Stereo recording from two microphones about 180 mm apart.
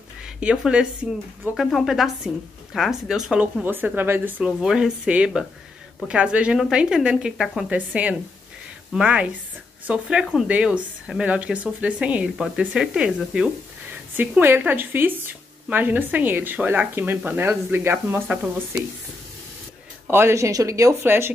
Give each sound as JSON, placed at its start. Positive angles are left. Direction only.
{"t": 0.2, "sound": "a woman's voice", "side_deg": -5}
{"t": 20.1, "sound": "speech", "side_deg": -15}